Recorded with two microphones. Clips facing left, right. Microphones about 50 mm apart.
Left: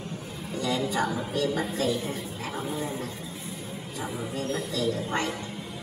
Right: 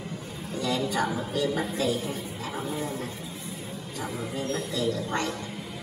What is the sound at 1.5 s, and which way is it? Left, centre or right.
Speech, centre.